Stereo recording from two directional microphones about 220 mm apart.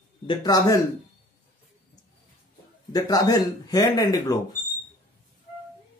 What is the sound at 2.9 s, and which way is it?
Speech, 15° left (ahead or behind).